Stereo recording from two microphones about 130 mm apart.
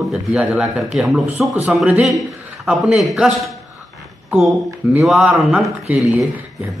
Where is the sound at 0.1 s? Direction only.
5° right (ahead or behind).